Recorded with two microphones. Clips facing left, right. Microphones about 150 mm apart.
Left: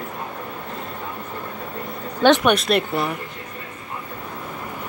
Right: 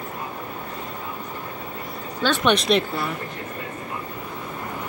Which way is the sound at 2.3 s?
10° left (ahead or behind).